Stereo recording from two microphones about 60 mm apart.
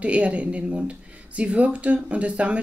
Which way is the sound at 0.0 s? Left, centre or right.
Right.